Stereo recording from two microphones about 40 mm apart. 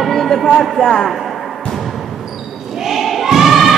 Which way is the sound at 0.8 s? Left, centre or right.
Centre.